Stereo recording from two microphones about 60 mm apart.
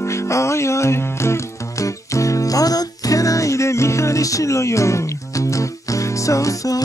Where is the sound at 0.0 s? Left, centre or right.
Left.